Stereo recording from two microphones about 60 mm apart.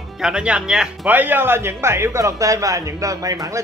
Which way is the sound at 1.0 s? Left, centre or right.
Right.